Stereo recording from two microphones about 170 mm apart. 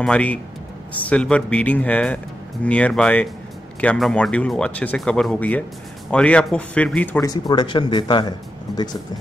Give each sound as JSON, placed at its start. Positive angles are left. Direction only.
{"t": 0.0, "sound": "speech", "side_deg": 5}
{"t": 7.2, "sound": "speech", "side_deg": 25}